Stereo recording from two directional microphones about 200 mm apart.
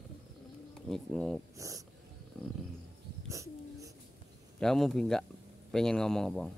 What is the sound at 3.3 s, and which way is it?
Wheeze, 15° right (ahead or behind).